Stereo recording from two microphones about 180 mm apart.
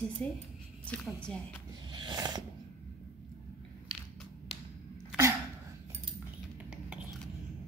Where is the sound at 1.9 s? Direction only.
25° right (ahead or behind).